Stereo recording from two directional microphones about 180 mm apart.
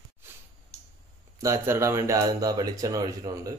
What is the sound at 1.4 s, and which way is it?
Speech, 15° right (ahead or behind).